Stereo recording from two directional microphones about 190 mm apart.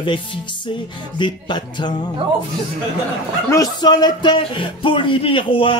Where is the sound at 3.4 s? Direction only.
20° left (ahead or behind).